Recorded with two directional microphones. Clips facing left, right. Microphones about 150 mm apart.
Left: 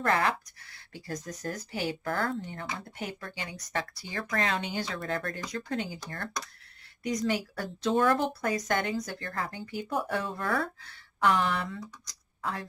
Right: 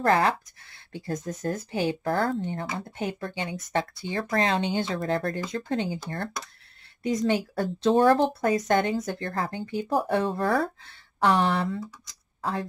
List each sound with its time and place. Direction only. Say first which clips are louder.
0.0 s speech: right 5 dB; 35° right (ahead or behind)
2.0 s speech: right 6 dB; 35° right (ahead or behind)